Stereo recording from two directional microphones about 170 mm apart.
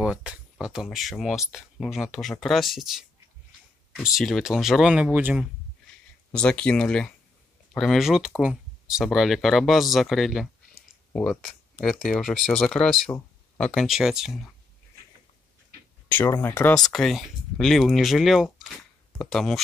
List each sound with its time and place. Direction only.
0.0 s speech: 5° right (ahead or behind)
6.3 s speech: 5° left (ahead or behind)
16.1 s speech: 10° left (ahead or behind)